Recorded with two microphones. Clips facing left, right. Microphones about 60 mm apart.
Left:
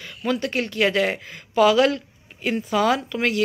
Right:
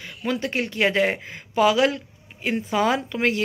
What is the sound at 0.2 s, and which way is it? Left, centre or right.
Speech, centre.